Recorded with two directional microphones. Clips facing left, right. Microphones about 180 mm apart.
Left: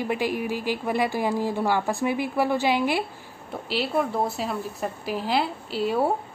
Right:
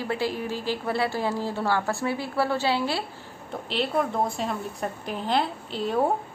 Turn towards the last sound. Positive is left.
turn(degrees=5)  # may be behind; listen again after turning